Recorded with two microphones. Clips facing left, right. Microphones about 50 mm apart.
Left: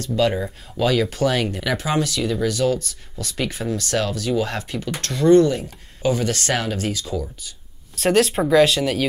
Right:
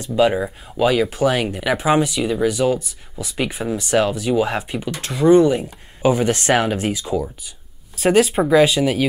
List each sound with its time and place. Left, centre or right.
0.0 s speech: centre
7.9 s speech: centre